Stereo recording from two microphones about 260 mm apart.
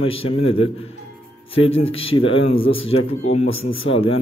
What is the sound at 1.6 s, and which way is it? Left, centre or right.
Speech, left.